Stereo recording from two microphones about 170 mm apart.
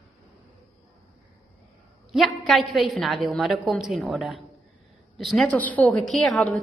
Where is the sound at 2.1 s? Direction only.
Centre (ahead or behind).